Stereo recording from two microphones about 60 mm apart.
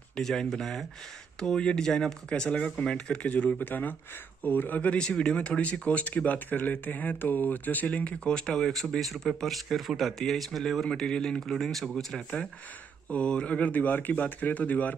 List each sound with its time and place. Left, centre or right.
0.1 s speech: centre
5.6 s speech: left; by 12.4 s centre
13.1 s speech: centre